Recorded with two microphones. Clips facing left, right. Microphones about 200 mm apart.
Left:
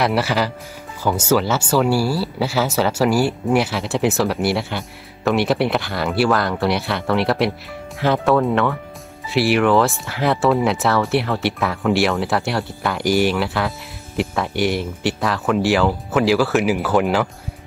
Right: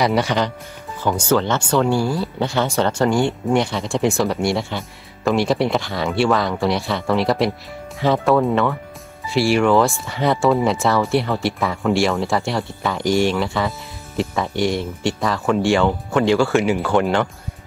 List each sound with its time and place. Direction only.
0.0 s speech: 5° left (ahead or behind)